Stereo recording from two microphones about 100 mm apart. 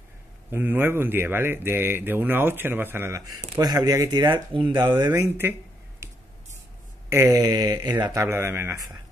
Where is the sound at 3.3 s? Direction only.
35° right (ahead or behind); by 4.9 s 55° right (ahead or behind).